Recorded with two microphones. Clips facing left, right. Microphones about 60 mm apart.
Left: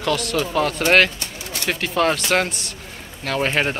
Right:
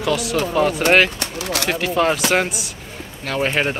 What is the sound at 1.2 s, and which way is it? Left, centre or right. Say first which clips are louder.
Bird: right 7 dB; right.